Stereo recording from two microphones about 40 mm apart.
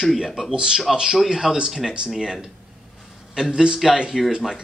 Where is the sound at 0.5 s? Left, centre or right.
Centre.